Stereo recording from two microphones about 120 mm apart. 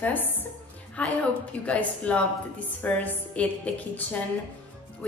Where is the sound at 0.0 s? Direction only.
15° left (ahead or behind).